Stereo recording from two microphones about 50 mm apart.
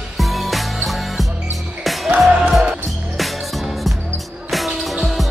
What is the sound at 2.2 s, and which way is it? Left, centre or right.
Music, right.